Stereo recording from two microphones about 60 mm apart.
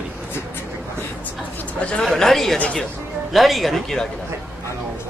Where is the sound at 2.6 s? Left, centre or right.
Centre.